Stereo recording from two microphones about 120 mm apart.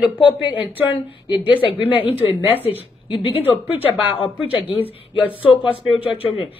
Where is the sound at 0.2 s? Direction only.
45° left (ahead or behind).